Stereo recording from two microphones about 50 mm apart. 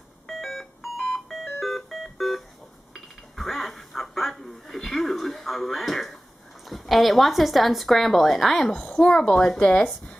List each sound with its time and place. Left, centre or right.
0.3 s music: centre
2.9 s a sound: centre
6.7 s a woman's voice: centre
8.7 s speech: centre